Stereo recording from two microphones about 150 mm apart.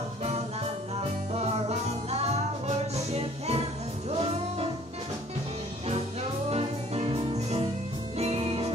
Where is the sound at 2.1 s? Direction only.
45° right (ahead or behind).